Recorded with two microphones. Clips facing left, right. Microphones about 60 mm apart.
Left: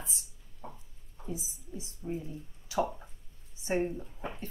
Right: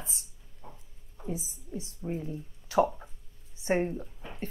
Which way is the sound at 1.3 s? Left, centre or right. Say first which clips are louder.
Right 2 dB; right.